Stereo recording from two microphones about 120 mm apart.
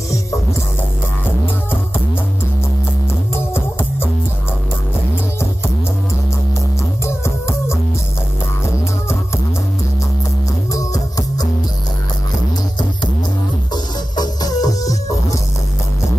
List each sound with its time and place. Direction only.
3.3 s music: 20° left (ahead or behind)
7.1 s music: 20° left (ahead or behind)
10.7 s music: 30° left (ahead or behind)
14.1 s music: 35° left (ahead or behind)